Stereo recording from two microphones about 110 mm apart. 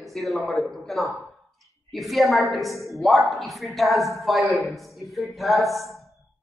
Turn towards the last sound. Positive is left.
turn(degrees=0)  # may be behind; listen again after turning